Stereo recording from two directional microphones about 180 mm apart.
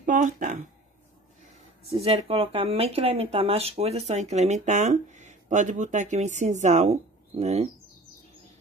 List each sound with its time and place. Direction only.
0.0 s speech: 45° right (ahead or behind)
2.0 s speech: 30° right (ahead or behind)